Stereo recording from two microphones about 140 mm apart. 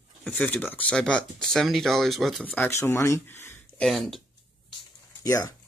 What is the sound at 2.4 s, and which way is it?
Speech, 15° left (ahead or behind).